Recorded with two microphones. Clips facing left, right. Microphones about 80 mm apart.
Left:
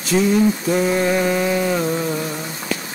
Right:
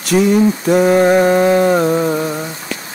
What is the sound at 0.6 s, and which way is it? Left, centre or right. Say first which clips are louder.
Mantra: right 7 dB; right.